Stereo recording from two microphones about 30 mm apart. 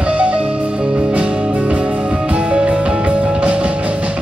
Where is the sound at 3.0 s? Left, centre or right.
Right.